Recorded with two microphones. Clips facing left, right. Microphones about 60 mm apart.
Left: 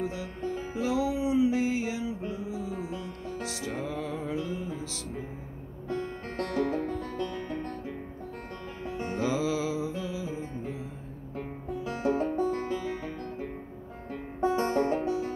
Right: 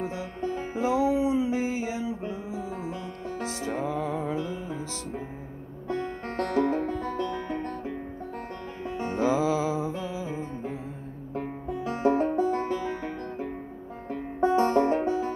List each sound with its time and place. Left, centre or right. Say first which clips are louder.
0.0 s music: right 2 dB; right
5.9 s music: right 3 dB; right
9.0 s music: right 4 dB; right
12.5 s music: right 3 dB; right
14.4 s music: right 4 dB; right